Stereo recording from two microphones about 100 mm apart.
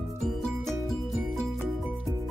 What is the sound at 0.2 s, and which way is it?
Music, 5° left (ahead or behind).